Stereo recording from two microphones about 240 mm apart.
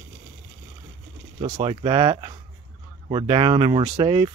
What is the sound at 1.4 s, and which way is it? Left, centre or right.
Speech, right.